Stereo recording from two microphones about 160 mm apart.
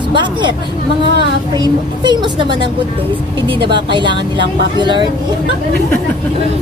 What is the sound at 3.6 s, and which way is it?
Speech, 30° right (ahead or behind).